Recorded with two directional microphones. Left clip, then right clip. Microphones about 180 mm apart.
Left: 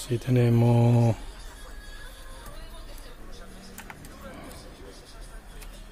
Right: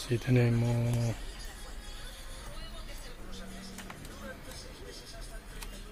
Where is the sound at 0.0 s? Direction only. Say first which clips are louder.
Left 4 dB; 15° left (ahead or behind).